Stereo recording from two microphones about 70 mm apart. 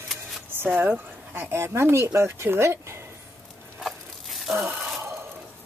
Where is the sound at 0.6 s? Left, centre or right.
Right.